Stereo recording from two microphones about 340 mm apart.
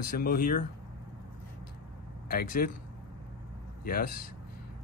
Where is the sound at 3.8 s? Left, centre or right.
Left.